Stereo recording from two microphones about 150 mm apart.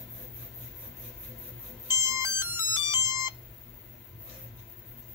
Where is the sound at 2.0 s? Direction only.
15° right (ahead or behind).